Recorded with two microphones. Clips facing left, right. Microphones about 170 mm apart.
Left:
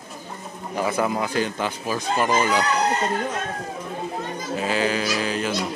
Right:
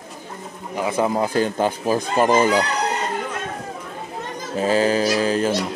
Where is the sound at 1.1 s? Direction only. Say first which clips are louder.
Right 4 dB; 35° right (ahead or behind).